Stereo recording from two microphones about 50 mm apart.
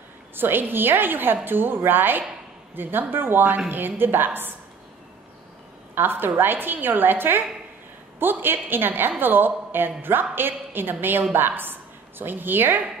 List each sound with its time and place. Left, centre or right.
0.4 s a woman's voice: right
5.9 s a woman's voice: right